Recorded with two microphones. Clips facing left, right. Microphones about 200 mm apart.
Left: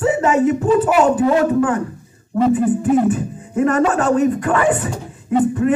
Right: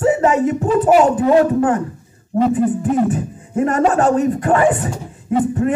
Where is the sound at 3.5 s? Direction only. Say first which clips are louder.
Even; 35° right (ahead or behind).